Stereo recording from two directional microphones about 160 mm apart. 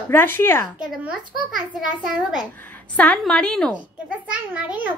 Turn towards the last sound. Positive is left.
turn(degrees=-10)  # may be behind; listen again after turning